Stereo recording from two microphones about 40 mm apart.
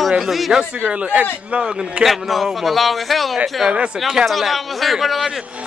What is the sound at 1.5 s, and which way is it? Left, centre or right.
Speech, centre.